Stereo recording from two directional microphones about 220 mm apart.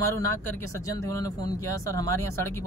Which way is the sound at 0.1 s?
10° left (ahead or behind).